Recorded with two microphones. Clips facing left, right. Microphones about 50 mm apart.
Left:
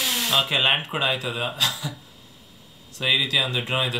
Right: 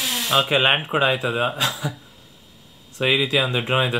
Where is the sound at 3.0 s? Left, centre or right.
Right.